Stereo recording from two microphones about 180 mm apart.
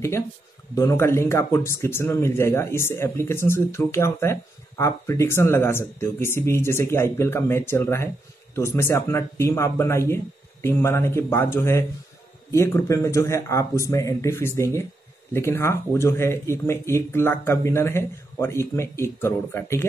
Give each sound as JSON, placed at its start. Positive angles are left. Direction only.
{"t": 0.7, "sound": "speech", "side_deg": 15}